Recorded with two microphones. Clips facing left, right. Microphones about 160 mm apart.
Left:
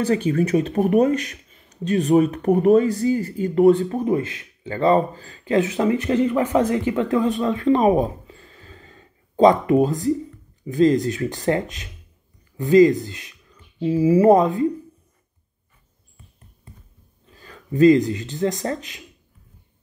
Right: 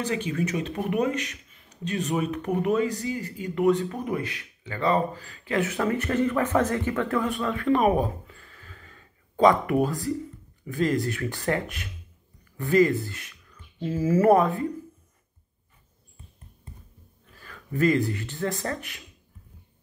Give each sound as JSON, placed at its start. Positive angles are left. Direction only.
{"t": 0.0, "sound": "speech", "side_deg": 40}
{"t": 0.5, "sound": "speech", "side_deg": 35}
{"t": 17.3, "sound": "speech", "side_deg": 25}